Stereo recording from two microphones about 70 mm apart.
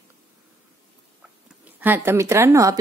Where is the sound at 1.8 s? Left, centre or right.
Right.